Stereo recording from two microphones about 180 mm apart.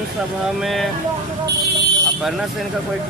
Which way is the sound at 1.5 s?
70° right (ahead or behind).